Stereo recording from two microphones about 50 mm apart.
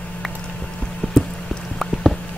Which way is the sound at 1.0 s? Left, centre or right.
Left.